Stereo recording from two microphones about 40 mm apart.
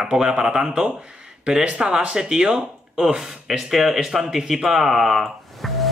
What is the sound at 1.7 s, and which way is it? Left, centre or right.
Speech, right.